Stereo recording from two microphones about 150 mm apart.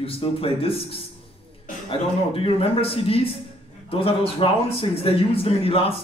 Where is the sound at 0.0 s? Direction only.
40° left (ahead or behind).